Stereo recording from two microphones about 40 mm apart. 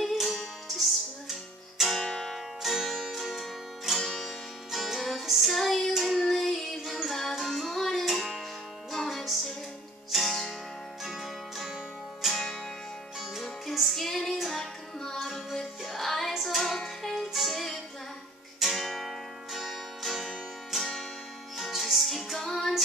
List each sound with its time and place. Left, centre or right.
0.0 s music: centre
2.0 s music: centre
4.6 s music: centre